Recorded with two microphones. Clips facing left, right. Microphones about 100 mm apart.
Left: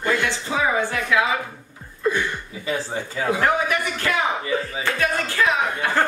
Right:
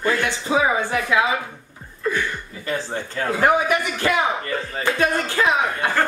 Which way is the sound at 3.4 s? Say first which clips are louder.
Right 6 dB; 20° right (ahead or behind).